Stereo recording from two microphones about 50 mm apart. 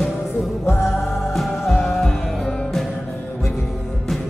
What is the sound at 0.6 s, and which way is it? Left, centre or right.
Music, left.